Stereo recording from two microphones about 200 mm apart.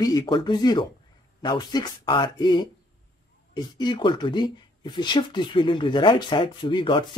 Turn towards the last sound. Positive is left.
turn(degrees=25)  # may be behind; listen again after turning